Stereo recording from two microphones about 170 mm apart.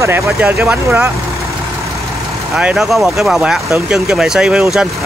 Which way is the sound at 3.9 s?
Centre (ahead or behind).